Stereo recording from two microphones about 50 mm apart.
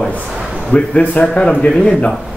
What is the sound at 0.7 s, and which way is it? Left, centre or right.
Speech, left.